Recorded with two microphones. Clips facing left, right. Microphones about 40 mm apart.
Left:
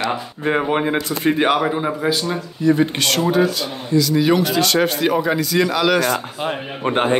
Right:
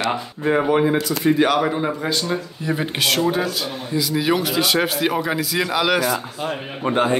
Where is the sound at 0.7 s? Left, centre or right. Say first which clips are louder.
Right 1 dB; left.